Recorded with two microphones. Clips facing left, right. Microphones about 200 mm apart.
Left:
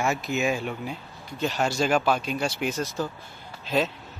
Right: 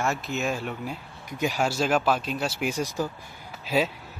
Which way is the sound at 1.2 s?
15° right (ahead or behind).